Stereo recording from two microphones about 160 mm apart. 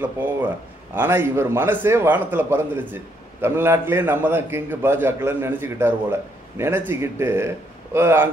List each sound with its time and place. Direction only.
0.0 s a man's voice: 10° right (ahead or behind)